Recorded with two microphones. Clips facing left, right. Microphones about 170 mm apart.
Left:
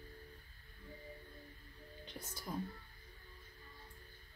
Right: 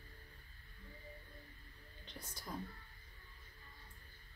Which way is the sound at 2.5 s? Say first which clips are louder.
Left 4 dB; 5° left (ahead or behind).